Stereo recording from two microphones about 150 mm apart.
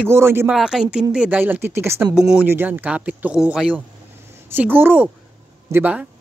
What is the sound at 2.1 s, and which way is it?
Speech, 5° right (ahead or behind).